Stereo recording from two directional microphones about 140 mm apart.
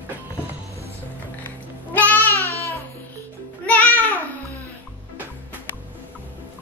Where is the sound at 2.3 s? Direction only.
20° right (ahead or behind).